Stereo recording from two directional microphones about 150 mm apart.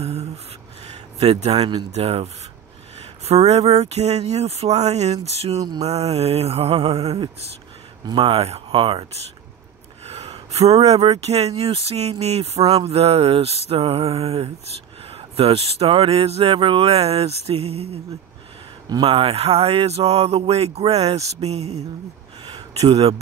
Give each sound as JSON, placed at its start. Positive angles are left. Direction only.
{"t": 0.0, "sound": "a sound", "side_deg": -45}
{"t": 1.9, "sound": "speech", "side_deg": -45}
{"t": 5.6, "sound": "mantra", "side_deg": -25}
{"t": 5.9, "sound": "speech", "side_deg": -45}
{"t": 10.0, "sound": "a sound", "side_deg": -45}
{"t": 10.5, "sound": "speech", "side_deg": -45}
{"t": 18.9, "sound": "speech", "side_deg": -35}